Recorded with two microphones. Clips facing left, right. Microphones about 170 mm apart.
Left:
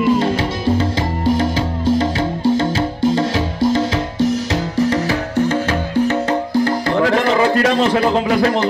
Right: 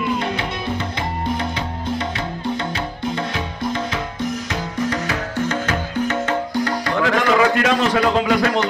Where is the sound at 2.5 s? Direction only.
35° left (ahead or behind).